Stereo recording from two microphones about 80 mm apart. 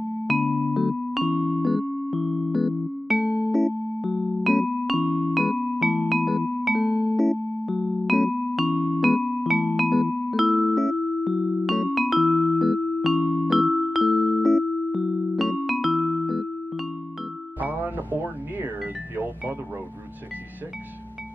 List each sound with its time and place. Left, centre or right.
0.3 s music: centre
13.6 s music: centre
17.6 s music: right